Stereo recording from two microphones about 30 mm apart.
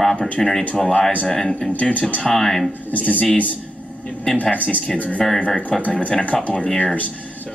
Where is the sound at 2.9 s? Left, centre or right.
Left.